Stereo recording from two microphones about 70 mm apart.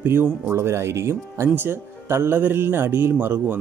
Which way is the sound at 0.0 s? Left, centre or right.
Right.